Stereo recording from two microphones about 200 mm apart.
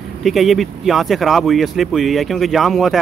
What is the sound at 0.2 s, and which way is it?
Speech, centre (ahead or behind).